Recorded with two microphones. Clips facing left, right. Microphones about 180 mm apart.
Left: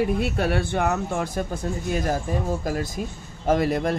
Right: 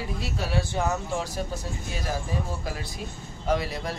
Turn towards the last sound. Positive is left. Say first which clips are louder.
# left 6 dB
turn(degrees=50)  # may be behind; listen again after turning